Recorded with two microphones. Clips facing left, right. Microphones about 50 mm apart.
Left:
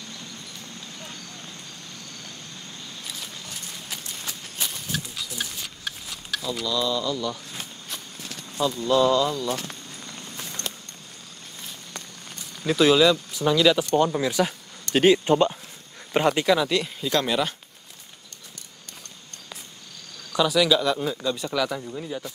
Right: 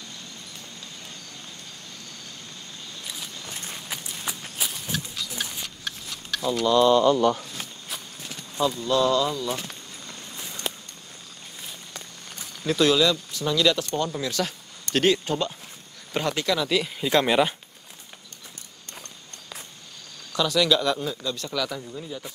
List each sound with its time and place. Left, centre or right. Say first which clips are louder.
4.2 s run: right 2 dB; centre
4.9 s a sound: even; centre
6.6 s speech: right 10 dB; right
8.8 s speech: left 3 dB; centre
10.4 s a sound: right 2 dB; centre
12.6 s speech: left 3 dB; centre
15.2 s speech: left 7 dB; left
16.6 s speech: even; centre
17.0 s speech: right 6 dB; centre
20.3 s speech: left 2 dB; centre
21.0 s speech: left 3 dB; centre